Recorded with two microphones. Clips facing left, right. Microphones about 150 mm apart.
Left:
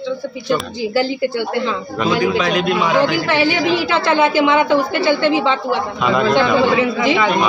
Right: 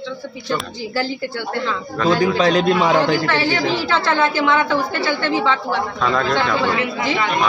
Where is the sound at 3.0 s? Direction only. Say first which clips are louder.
Left 2 dB; 15° left (ahead or behind).